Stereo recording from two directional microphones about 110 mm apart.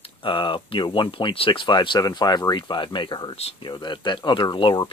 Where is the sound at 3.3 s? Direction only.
65° left (ahead or behind).